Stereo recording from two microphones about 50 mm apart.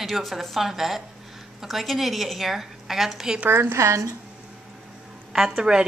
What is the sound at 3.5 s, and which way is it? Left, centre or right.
Speech, right.